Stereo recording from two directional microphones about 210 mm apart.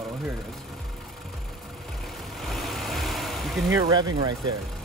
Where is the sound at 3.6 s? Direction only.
20° right (ahead or behind).